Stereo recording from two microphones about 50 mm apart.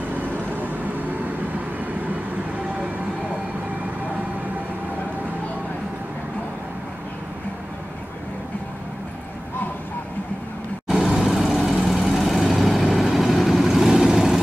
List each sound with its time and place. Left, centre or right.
0.6 s vehicle: right
11.2 s vehicle: centre